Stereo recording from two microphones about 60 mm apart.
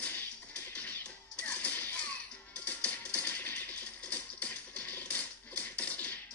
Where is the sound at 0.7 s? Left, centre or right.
Left.